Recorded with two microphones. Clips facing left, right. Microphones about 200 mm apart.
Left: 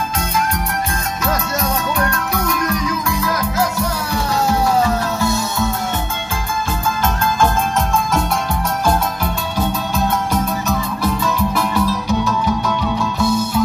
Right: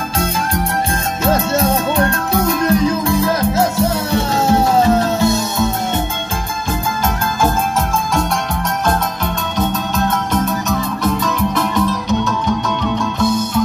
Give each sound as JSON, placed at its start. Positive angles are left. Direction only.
{"t": 1.2, "sound": "music", "side_deg": -25}
{"t": 8.8, "sound": "music", "side_deg": 10}
{"t": 11.2, "sound": "music", "side_deg": 10}